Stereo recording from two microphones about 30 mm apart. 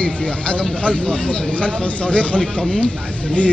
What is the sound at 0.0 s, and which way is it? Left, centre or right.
Speech, left.